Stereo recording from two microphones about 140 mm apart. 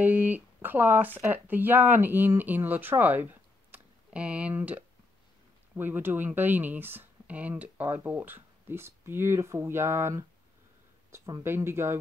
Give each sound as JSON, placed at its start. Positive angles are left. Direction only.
{"t": 0.0, "sound": "speech", "side_deg": -15}